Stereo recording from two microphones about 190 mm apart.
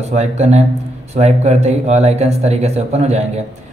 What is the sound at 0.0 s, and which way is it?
Speech, 35° right (ahead or behind).